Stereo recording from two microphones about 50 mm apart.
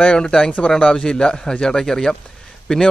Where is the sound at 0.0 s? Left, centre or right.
Centre.